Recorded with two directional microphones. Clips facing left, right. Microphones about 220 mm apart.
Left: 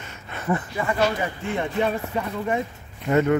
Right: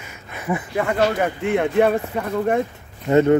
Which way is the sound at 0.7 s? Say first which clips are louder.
Right 7 dB; 60° right (ahead or behind).